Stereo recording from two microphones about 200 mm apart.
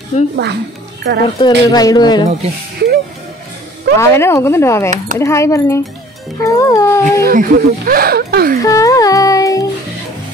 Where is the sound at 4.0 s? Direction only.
15° left (ahead or behind).